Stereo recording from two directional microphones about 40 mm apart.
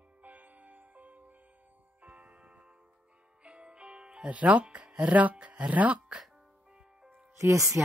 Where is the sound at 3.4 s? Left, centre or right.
Right.